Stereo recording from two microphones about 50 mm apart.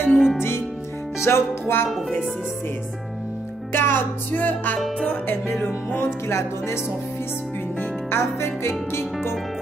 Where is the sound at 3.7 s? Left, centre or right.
Left.